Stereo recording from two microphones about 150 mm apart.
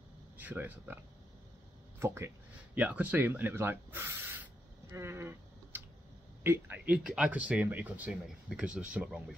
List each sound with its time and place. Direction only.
0.4 s speech: 10° right (ahead or behind)
2.0 s speech: 15° right (ahead or behind)